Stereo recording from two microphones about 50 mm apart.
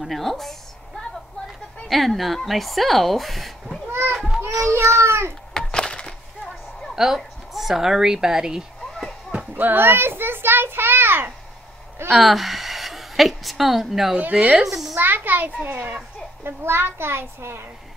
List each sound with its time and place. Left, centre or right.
0.0 s speech: centre
1.9 s speech: centre
4.1 s children playing: centre
4.5 s a child's voice: right
5.5 s a sound: centre
7.0 s a woman's voice: centre
9.5 s a child's voice: right
12.1 s a woman's voice: centre
15.0 s a child's voice: right
16.4 s a child's voice: right